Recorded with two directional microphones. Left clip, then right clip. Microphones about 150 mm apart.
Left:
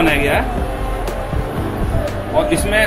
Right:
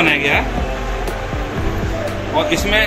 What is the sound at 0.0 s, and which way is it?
Music, 30° left (ahead or behind).